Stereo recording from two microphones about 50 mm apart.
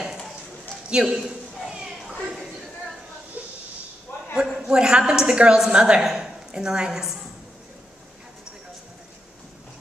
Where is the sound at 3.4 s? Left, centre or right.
Right.